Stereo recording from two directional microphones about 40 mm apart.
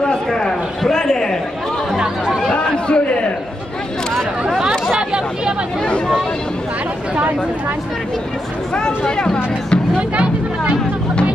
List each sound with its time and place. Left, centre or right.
0.3 s a man's voice: centre
2.5 s chatter: left
4.5 s chatter: centre
8.7 s speech: centre
9.9 s a sound: right